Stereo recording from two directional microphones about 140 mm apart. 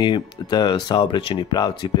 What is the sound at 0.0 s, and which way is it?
Speech, 30° left (ahead or behind).